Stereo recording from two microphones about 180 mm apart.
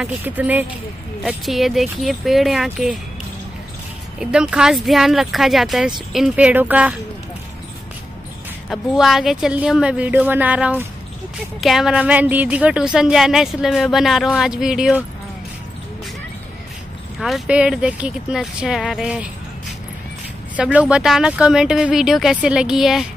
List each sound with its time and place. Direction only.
0.0 s a woman's voice: 10° right (ahead or behind)
4.2 s a woman's voice: 5° right (ahead or behind)
8.6 s a woman's voice: centre (ahead or behind)
17.2 s speech: 5° right (ahead or behind)
20.5 s speech: 5° right (ahead or behind)